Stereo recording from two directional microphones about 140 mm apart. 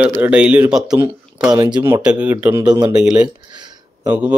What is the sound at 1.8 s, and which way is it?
Speech, 10° right (ahead or behind).